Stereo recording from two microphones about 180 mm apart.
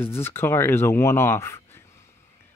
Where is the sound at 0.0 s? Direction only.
15° left (ahead or behind).